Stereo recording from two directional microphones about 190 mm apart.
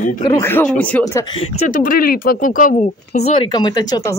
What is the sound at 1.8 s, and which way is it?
Speech, 50° left (ahead or behind).